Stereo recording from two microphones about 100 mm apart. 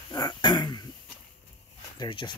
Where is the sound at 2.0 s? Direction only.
50° left (ahead or behind).